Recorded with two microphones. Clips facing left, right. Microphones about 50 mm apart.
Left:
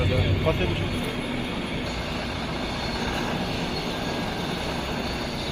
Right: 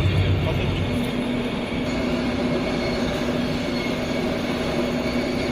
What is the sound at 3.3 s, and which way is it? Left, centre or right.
Vehicle, right.